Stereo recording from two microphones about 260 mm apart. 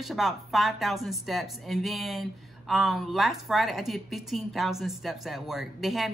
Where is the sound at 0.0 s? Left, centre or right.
Centre.